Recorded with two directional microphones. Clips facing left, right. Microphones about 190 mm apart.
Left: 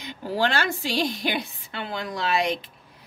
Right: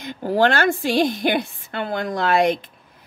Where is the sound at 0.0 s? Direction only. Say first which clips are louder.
Right 7 dB; 50° right (ahead or behind).